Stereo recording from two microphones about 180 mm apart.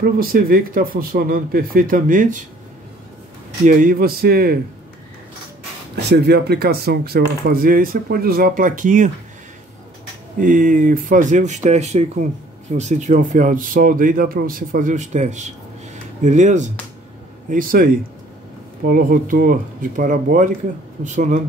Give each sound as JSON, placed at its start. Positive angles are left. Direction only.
{"t": 0.0, "sound": "speech", "side_deg": -55}
{"t": 3.6, "sound": "speech", "side_deg": -50}
{"t": 5.9, "sound": "speech", "side_deg": -65}
{"t": 10.4, "sound": "speech", "side_deg": -50}
{"t": 18.9, "sound": "speech", "side_deg": -50}